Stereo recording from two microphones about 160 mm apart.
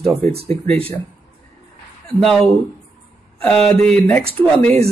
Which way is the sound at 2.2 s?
Centre (ahead or behind).